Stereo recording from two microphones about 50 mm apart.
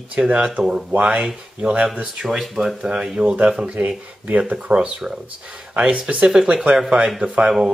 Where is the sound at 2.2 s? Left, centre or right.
Centre; by 3.7 s right.